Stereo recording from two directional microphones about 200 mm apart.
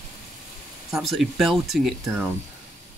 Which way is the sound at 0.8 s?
Centre (ahead or behind).